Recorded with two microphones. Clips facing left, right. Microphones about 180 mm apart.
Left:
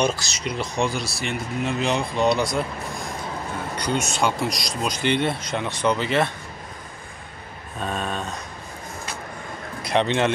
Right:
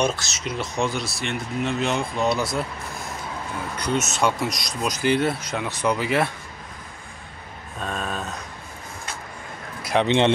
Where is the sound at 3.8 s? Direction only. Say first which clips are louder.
Right 1 dB; 5° right (ahead or behind).